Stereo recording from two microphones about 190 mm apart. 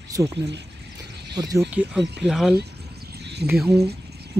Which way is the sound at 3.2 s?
60° right (ahead or behind).